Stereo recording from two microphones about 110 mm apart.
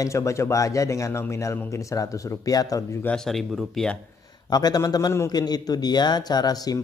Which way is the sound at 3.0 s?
5° left (ahead or behind).